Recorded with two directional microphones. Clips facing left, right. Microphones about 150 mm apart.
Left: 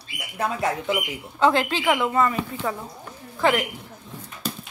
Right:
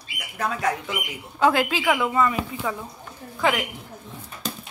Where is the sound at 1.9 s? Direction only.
Centre (ahead or behind).